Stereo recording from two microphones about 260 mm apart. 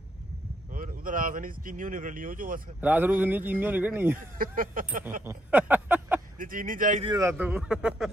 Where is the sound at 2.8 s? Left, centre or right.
Centre.